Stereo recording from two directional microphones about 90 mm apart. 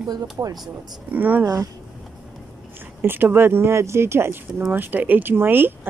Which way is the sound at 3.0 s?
25° right (ahead or behind).